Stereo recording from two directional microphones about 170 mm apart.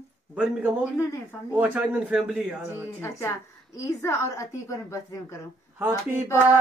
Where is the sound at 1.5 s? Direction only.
10° right (ahead or behind).